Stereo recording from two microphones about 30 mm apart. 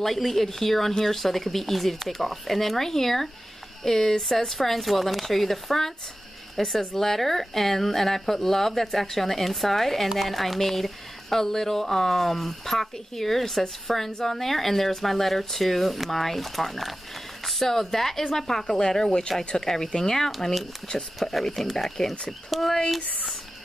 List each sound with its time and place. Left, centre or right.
0.0 s speech: centre
22.5 s speech: centre